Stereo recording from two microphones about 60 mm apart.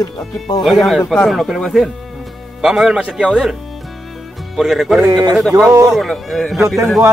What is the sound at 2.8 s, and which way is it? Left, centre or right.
Speech, centre.